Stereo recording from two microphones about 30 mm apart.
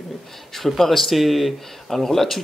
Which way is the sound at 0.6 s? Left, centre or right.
Centre.